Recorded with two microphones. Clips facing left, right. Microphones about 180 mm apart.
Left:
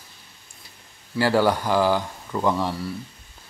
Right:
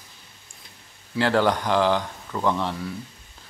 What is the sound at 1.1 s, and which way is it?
Speech, 5° left (ahead or behind).